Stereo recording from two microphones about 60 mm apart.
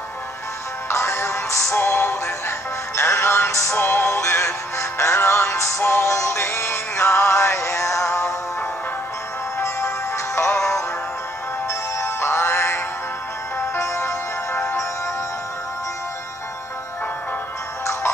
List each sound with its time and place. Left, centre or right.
0.8 s music: left
1.8 s music: left
3.7 s music: left
5.8 s music: left
6.0 s music: left
10.1 s music: left
12.0 s music: left